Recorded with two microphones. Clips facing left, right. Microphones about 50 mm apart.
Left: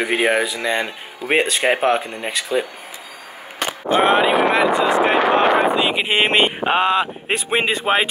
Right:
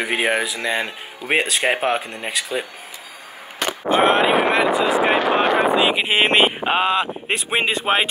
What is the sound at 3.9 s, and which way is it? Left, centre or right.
Speech, centre.